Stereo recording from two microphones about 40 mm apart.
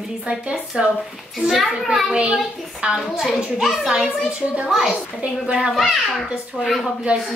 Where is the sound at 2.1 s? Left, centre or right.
Right.